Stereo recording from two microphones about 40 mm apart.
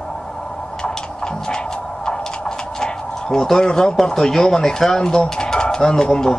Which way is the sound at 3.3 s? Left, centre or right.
Centre.